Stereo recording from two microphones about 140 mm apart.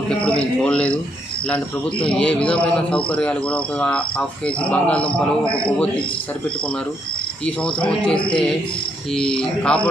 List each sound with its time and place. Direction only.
0.1 s a man's voice: 5° left (ahead or behind)
7.4 s a man's voice: 10° left (ahead or behind)
9.1 s a man's voice: 5° left (ahead or behind)